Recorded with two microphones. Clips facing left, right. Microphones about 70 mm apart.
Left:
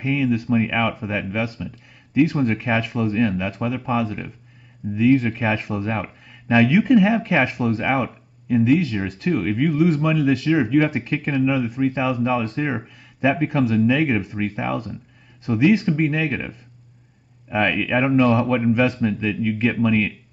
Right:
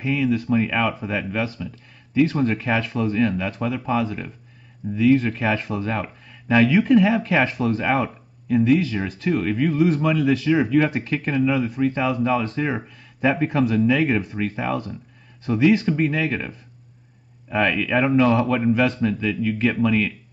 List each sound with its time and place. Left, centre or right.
0.0 s speech: centre